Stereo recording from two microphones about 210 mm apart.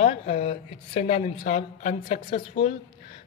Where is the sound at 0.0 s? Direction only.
30° left (ahead or behind).